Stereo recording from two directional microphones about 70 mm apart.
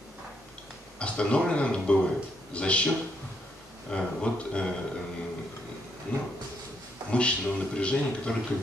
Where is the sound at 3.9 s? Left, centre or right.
Centre.